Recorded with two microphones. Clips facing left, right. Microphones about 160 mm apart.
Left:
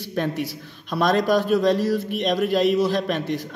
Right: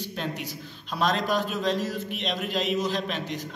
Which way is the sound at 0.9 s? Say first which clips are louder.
Left 6 dB; 55° left (ahead or behind).